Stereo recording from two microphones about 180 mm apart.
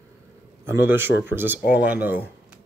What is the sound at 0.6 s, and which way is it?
Speech, 10° right (ahead or behind).